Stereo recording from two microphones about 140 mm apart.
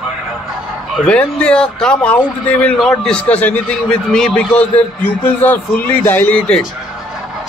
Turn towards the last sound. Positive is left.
turn(degrees=10)  # may be behind; listen again after turning